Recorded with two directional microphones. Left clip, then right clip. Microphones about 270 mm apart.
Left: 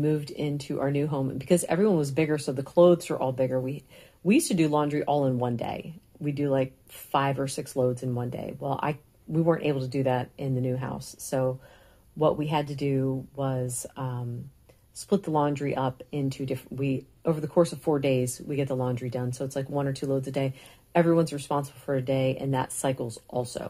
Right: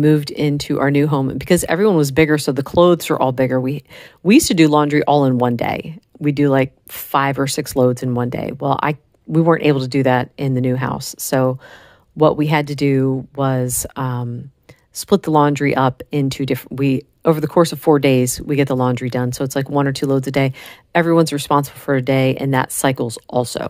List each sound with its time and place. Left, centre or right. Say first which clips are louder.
0.0 s speech: right 12 dB; right